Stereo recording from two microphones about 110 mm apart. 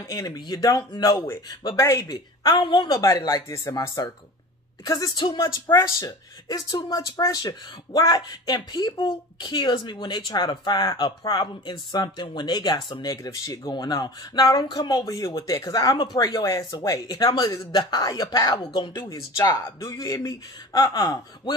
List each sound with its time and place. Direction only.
0.0 s a woman's voice: 30° left (ahead or behind)
1.8 s speech: 30° left (ahead or behind); by 3.0 s 45° left (ahead or behind)
3.0 s a woman's voice: 30° left (ahead or behind)
5.9 s speech: 30° left (ahead or behind)
19.0 s speech: 30° left (ahead or behind)